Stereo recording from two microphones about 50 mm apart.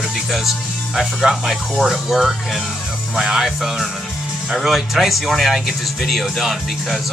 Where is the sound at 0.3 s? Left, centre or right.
Centre.